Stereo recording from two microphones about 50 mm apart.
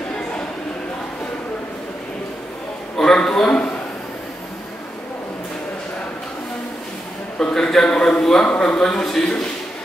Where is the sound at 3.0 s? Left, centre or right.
Centre.